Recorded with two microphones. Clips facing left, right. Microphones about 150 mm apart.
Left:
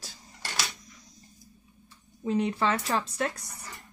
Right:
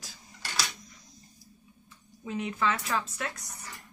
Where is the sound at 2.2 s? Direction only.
35° left (ahead or behind).